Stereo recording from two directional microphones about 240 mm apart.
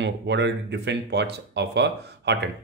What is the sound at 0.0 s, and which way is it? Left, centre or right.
Speech, right.